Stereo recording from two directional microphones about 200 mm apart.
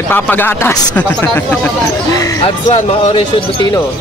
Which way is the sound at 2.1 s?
20° left (ahead or behind).